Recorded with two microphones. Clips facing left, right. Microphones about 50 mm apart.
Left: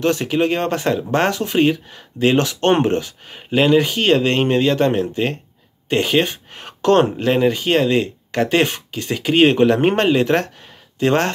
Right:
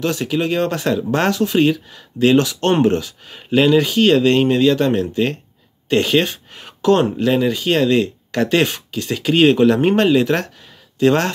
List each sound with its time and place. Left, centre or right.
0.0 s speech: left
6.6 s speech: left